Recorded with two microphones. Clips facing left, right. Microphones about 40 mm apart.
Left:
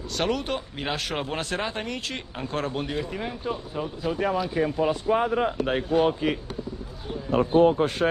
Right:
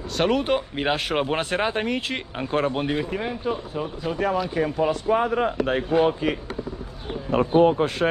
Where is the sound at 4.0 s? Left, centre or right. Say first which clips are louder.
Right 1 dB; centre.